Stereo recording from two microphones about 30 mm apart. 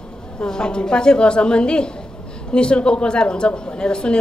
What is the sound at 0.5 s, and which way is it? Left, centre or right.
A woman's voice, left.